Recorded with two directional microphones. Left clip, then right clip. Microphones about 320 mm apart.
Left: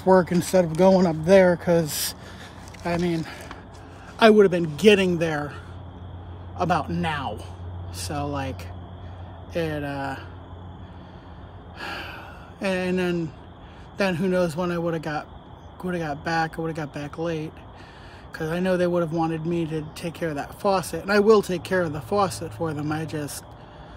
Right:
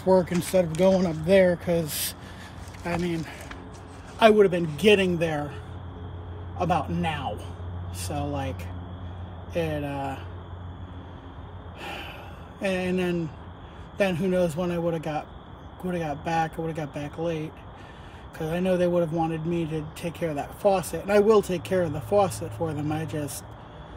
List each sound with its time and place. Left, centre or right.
0.0 s speech: centre
4.2 s a man's voice: left
5.0 s speech: centre
7.2 s speech: centre
11.8 s gasp: centre
13.9 s speech: centre